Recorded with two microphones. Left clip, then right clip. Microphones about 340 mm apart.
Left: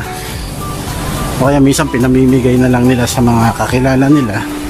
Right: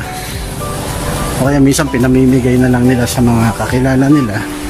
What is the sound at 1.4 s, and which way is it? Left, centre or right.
Speech, centre.